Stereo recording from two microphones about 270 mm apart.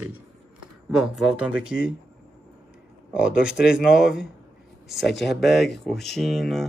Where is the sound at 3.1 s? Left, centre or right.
Centre.